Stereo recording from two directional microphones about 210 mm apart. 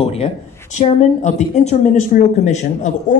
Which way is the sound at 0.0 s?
30° left (ahead or behind).